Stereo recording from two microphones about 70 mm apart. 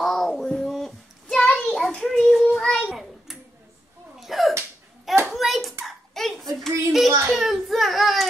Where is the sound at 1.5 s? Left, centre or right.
Centre.